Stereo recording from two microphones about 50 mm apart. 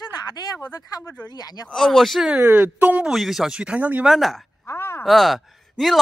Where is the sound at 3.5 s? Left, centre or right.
Centre.